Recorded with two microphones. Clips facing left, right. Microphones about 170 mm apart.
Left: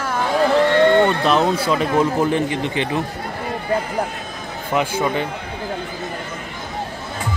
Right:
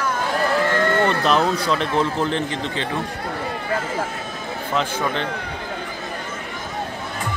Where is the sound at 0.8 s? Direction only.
20° left (ahead or behind).